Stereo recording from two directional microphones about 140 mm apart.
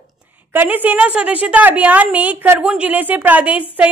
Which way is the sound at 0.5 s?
15° right (ahead or behind).